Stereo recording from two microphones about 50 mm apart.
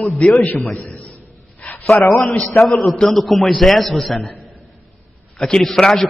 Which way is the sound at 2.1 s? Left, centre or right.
Centre.